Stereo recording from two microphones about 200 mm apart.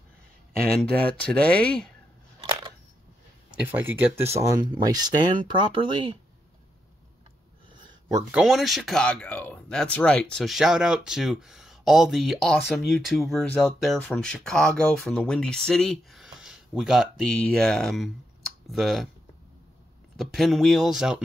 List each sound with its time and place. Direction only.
0.8 s speech: 5° left (ahead or behind)
3.5 s speech: 10° right (ahead or behind)
8.3 s speech: 5° right (ahead or behind)
20.2 s speech: centre (ahead or behind)